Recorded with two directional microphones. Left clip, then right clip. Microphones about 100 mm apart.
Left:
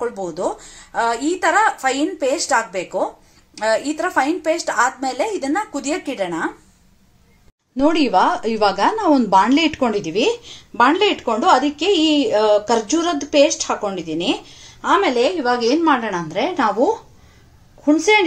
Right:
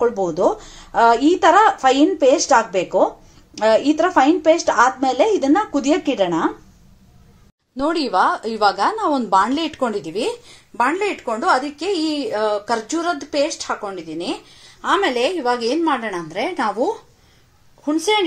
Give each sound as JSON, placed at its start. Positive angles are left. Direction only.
{"t": 0.0, "sound": "speech", "side_deg": 5}
{"t": 8.0, "sound": "speech", "side_deg": 0}
{"t": 14.8, "sound": "a woman's voice", "side_deg": -25}